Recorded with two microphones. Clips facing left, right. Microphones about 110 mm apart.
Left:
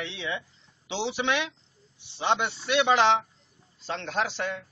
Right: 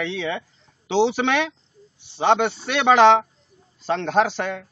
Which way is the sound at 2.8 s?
70° right (ahead or behind).